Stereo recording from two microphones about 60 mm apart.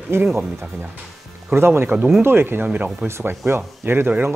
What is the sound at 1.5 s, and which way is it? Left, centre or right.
Speech, right.